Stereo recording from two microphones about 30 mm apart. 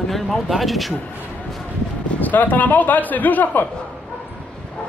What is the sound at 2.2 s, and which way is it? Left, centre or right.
A man's voice, left.